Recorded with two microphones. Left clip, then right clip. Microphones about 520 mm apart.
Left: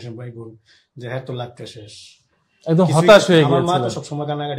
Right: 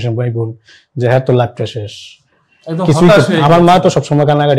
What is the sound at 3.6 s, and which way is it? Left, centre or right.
Speech, right.